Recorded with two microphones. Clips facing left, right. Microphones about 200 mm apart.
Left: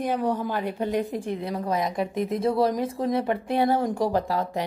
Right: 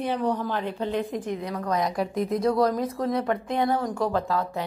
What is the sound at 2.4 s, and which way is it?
Speech, 25° left (ahead or behind).